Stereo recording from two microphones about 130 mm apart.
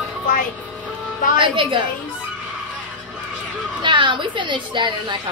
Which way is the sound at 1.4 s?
40° right (ahead or behind).